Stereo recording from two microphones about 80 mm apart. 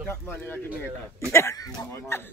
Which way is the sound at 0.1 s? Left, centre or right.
Left.